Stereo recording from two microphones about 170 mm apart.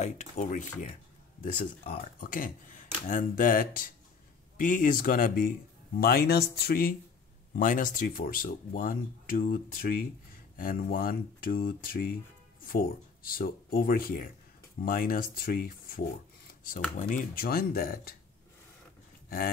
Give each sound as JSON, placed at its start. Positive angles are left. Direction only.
{"t": 0.0, "sound": "speech", "side_deg": 45}
{"t": 7.5, "sound": "speech", "side_deg": 50}
{"t": 17.1, "sound": "speech", "side_deg": 55}
{"t": 19.2, "sound": "dog", "side_deg": 60}